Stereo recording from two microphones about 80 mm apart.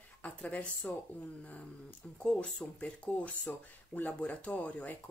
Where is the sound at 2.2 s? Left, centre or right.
Centre.